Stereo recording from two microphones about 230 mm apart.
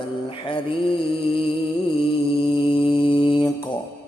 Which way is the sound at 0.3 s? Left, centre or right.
Left.